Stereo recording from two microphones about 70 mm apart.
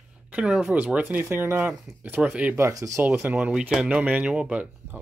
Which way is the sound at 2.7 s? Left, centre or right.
Right.